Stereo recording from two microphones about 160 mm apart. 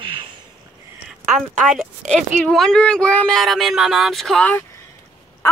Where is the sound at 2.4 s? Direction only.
5° left (ahead or behind).